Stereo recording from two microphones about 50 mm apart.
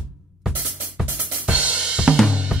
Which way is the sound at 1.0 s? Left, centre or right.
Right.